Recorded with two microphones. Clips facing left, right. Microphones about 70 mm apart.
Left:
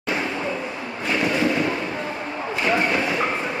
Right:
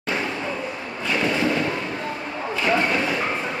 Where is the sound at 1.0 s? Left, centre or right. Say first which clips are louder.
Left 1 dB; left.